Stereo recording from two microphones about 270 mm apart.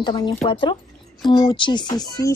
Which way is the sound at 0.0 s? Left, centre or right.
Centre.